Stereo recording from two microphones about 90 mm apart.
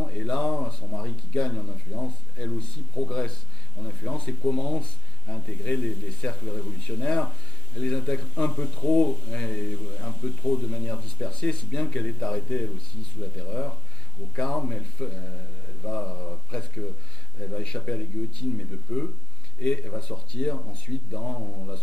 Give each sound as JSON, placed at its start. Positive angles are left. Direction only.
{"t": 0.0, "sound": "speech", "side_deg": 10}